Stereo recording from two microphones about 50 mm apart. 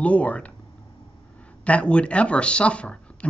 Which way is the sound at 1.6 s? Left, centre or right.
Left.